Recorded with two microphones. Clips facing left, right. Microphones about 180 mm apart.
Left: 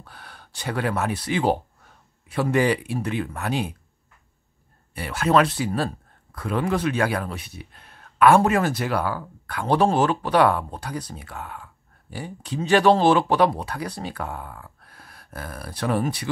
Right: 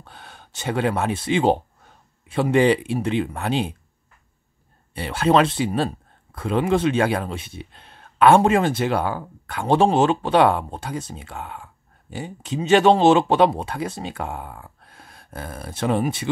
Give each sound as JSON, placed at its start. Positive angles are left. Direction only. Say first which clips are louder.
{"t": 0.0, "sound": "speech", "louder": "right 1 dB", "side_deg": -25}
{"t": 4.9, "sound": "speech", "louder": "right 2 dB", "side_deg": -30}